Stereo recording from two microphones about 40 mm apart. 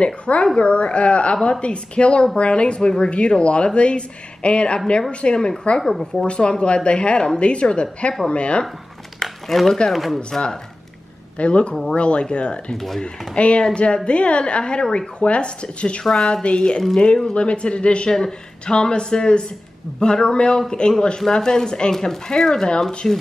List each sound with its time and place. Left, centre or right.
0.0 s a woman's voice: left
5.8 s speech: centre
6.2 s a woman's voice: left
9.2 s a sound: centre
9.9 s speech: centre
10.3 s speech: centre
11.3 s speech: left
12.7 s speech: centre
13.3 s speech: left
16.0 s speech: centre
16.4 s speech: left